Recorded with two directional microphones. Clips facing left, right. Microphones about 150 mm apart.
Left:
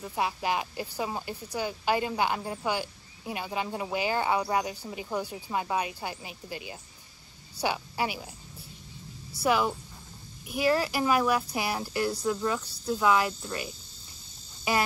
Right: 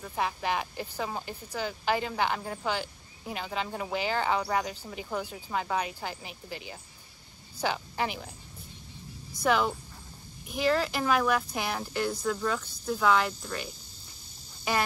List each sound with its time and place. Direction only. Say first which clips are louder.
0.0 s speech: left 1 dB; 10° left (ahead or behind)
9.4 s speech: even; 5° left (ahead or behind)